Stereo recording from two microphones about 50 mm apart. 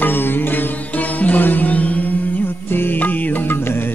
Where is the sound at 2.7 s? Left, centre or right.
Left.